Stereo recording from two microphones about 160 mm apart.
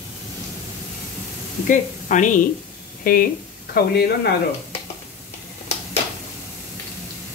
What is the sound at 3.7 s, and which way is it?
Speech, 75° left (ahead or behind).